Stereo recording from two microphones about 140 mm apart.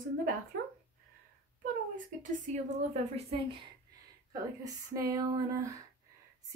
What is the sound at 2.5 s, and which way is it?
Speech, 55° right (ahead or behind).